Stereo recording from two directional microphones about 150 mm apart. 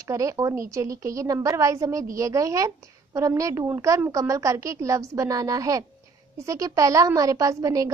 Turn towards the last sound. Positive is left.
turn(degrees=-20)  # may be behind; listen again after turning